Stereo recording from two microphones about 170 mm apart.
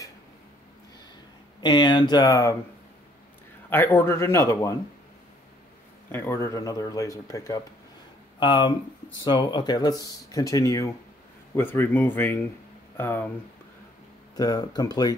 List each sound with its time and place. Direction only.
1.6 s speech: 25° left (ahead or behind)
3.7 s a man's voice: 10° left (ahead or behind)
6.1 s a man's voice: 15° left (ahead or behind)
14.3 s speech: 20° left (ahead or behind)